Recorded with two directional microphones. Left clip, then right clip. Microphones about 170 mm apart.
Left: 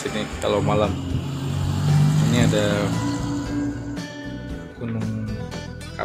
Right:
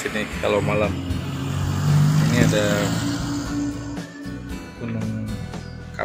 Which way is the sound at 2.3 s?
10° left (ahead or behind).